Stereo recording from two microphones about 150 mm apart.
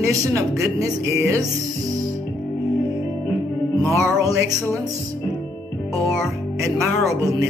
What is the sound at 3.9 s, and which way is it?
Speech, 20° right (ahead or behind).